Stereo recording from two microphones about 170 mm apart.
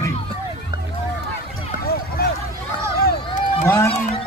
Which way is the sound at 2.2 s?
65° left (ahead or behind).